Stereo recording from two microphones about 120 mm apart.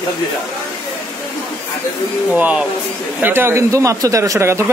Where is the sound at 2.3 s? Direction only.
10° right (ahead or behind).